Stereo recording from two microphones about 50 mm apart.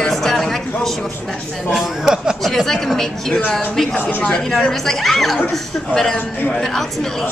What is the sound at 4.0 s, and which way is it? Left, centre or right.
Speech, left.